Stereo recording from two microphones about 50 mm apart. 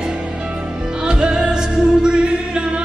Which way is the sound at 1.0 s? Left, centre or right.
Centre.